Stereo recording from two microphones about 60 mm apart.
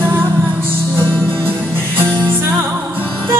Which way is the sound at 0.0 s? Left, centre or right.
Right.